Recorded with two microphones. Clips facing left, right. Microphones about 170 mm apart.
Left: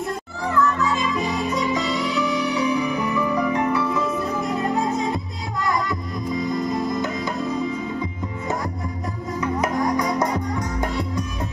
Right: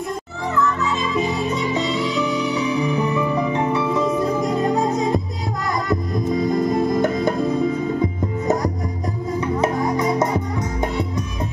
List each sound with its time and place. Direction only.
1.1 s music: 25° right (ahead or behind)
6.3 s music: 50° right (ahead or behind)
9.4 s music: 25° right (ahead or behind)